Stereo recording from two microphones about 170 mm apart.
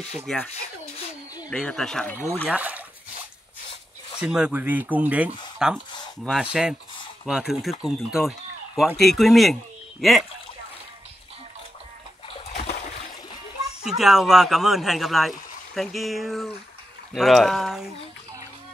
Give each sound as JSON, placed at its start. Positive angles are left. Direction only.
{"t": 0.3, "sound": "speech", "side_deg": 5}
{"t": 1.5, "sound": "speech", "side_deg": 5}
{"t": 2.5, "sound": "speech", "side_deg": -10}
{"t": 4.2, "sound": "a man's voice", "side_deg": -5}
{"t": 12.5, "sound": "splash", "side_deg": 65}
{"t": 13.8, "sound": "speech", "side_deg": 0}